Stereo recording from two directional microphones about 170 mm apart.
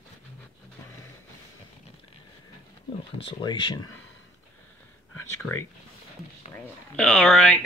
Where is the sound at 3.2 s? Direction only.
30° left (ahead or behind).